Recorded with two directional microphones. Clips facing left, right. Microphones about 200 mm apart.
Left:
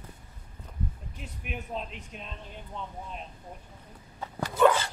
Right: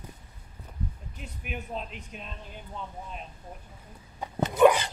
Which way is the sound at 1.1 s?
Centre (ahead or behind).